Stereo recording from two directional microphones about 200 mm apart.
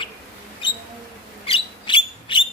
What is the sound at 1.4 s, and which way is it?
Bird, 25° left (ahead or behind).